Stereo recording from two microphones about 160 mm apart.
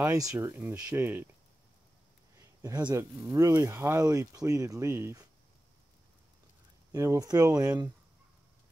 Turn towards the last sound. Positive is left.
turn(degrees=-25)  # may be behind; listen again after turning